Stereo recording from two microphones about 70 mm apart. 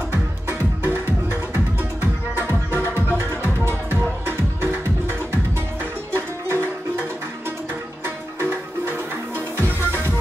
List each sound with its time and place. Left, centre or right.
0.1 s music: right
6.1 s music: right
8.4 s music: right